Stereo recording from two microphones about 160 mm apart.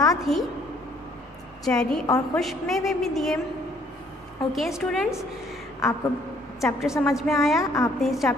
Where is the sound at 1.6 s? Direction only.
5° left (ahead or behind).